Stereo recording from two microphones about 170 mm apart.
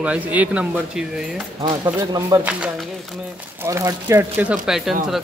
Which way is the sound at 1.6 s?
25° right (ahead or behind).